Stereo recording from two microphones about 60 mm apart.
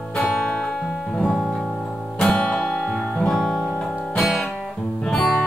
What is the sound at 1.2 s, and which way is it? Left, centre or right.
Music, centre.